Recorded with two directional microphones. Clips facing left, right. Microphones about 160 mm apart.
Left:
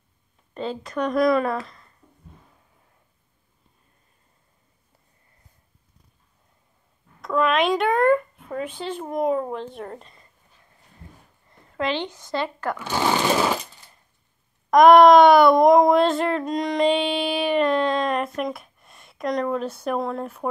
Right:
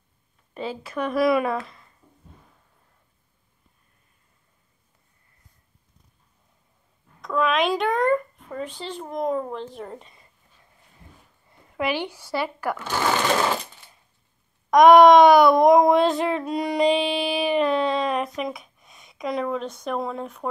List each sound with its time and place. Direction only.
0.6 s speech: 5° right (ahead or behind)
7.2 s speech: centre (ahead or behind)
11.7 s speech: 10° right (ahead or behind)
14.7 s a sound: centre (ahead or behind)